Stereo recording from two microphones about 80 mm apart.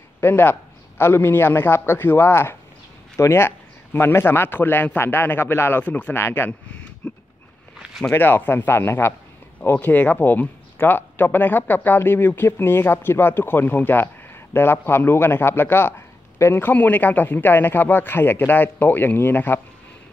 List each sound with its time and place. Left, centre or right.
0.2 s speech: left
7.0 s a sound: centre
8.1 s speech: left